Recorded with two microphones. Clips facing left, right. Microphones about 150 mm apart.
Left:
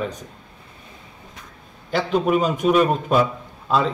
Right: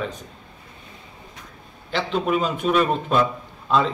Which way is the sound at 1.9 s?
10° left (ahead or behind).